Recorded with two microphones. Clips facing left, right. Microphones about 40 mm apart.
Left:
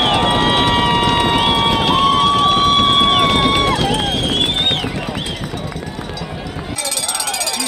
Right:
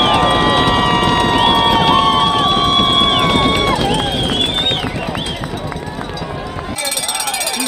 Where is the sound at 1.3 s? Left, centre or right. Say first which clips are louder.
Right 3 dB; centre.